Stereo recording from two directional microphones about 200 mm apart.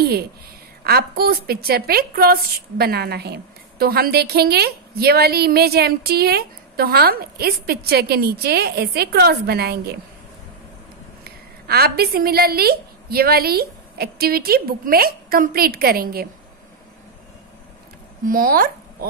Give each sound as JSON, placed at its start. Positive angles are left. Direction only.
{"t": 0.0, "sound": "a woman's voice", "side_deg": -50}
{"t": 11.2, "sound": "a woman's voice", "side_deg": -50}
{"t": 18.2, "sound": "speech", "side_deg": -45}